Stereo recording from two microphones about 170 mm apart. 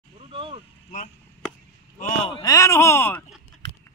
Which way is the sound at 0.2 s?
30° right (ahead or behind).